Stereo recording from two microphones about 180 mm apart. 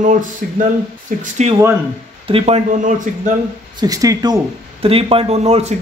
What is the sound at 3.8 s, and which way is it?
Speech, 20° right (ahead or behind).